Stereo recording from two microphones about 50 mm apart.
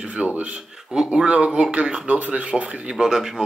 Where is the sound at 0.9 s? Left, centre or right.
Centre.